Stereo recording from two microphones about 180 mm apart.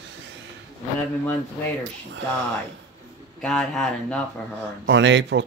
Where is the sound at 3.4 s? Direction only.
5° left (ahead or behind).